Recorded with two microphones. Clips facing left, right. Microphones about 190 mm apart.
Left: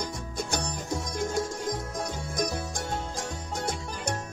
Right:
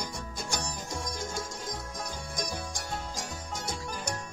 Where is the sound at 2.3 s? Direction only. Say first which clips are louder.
Left 6 dB; 60° left (ahead or behind).